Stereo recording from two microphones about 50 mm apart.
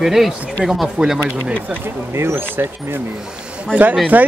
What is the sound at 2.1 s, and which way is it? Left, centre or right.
Speech, right.